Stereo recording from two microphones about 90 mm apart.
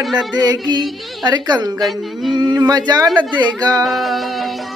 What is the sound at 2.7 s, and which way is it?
Speech, 50° right (ahead or behind).